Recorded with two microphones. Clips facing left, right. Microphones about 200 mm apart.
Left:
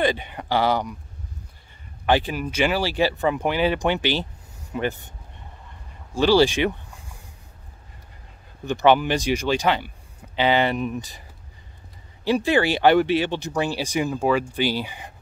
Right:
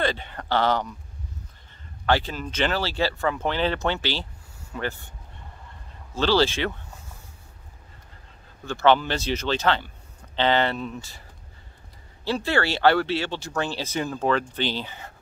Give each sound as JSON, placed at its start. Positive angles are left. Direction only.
{"t": 0.0, "sound": "speech", "side_deg": 15}
{"t": 2.0, "sound": "speech", "side_deg": 15}
{"t": 6.1, "sound": "speech", "side_deg": 15}
{"t": 8.6, "sound": "speech", "side_deg": 15}
{"t": 12.3, "sound": "speech", "side_deg": 15}